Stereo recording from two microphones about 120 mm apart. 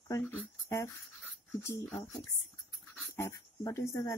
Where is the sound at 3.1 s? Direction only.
25° left (ahead or behind).